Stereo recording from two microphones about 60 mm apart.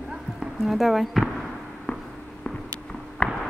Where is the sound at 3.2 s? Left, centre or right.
Centre.